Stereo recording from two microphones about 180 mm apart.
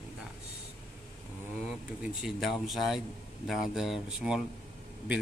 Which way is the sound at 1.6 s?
5° right (ahead or behind).